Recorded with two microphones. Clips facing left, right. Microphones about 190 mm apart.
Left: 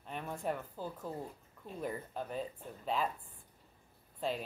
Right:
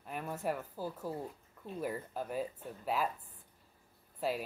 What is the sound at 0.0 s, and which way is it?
A woman's voice, 5° right (ahead or behind).